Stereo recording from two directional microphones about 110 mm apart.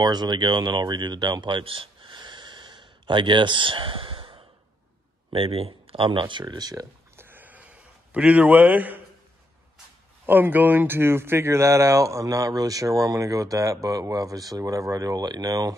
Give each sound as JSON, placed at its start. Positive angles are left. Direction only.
{"t": 0.0, "sound": "speech", "side_deg": -40}
{"t": 7.2, "sound": "a sound", "side_deg": -20}
{"t": 10.2, "sound": "speech", "side_deg": -20}